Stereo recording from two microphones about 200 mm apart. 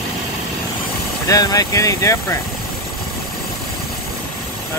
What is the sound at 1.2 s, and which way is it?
Speech, 15° left (ahead or behind).